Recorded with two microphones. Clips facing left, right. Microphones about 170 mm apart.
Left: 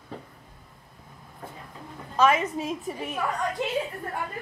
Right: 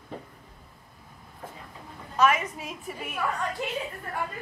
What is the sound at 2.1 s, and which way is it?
A woman's voice, 30° left (ahead or behind).